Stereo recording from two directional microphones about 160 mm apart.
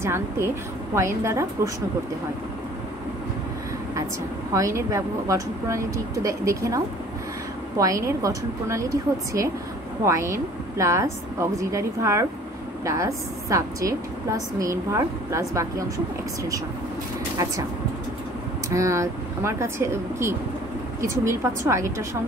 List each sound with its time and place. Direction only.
0.0 s speech: 15° right (ahead or behind)
4.6 s a woman's voice: 20° right (ahead or behind)
10.0 s a woman's voice: 20° right (ahead or behind)
18.7 s speech: 20° right (ahead or behind)